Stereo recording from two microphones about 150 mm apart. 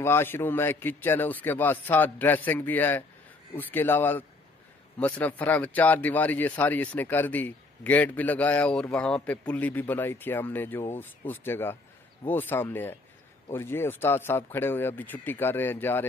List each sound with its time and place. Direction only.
0.0 s a man's voice: 15° left (ahead or behind)